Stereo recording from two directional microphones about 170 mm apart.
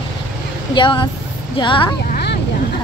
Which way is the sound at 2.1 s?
70° left (ahead or behind).